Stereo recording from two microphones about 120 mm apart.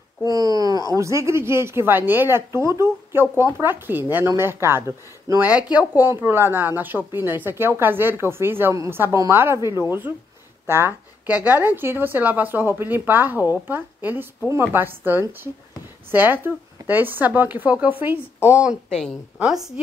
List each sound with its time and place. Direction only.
0.2 s a sound: 30° right (ahead or behind)
0.9 s a woman's voice: 25° right (ahead or behind)
5.5 s a woman's voice: 10° right (ahead or behind)
18.9 s a woman's voice: 5° left (ahead or behind)